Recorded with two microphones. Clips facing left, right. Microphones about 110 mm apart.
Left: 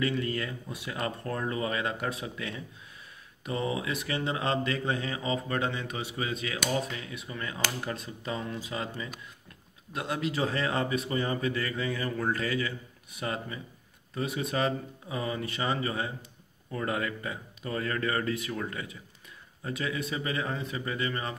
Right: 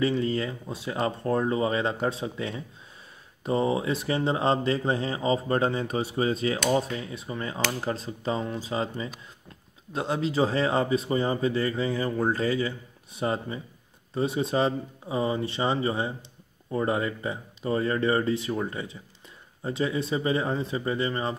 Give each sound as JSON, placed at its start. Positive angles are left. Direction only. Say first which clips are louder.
{"t": 0.0, "sound": "speech", "louder": "right 5 dB", "side_deg": -25}